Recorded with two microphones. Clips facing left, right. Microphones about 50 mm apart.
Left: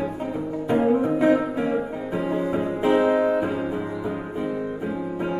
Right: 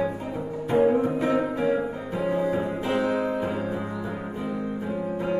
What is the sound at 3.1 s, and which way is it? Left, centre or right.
Music, left.